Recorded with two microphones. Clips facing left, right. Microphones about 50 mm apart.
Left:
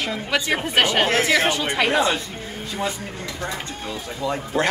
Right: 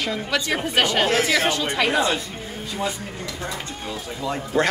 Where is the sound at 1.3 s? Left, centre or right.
Centre.